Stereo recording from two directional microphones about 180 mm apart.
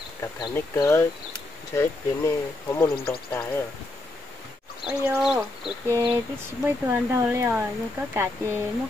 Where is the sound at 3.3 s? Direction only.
10° left (ahead or behind).